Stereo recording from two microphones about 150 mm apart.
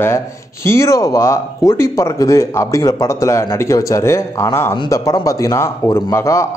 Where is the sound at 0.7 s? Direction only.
20° left (ahead or behind).